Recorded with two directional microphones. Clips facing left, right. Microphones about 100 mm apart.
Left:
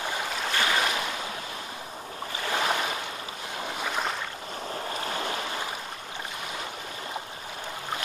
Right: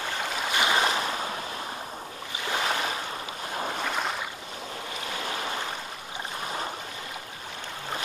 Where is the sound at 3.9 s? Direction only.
Centre (ahead or behind).